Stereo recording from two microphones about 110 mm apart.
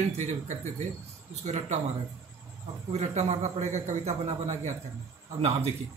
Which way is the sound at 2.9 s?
90° right.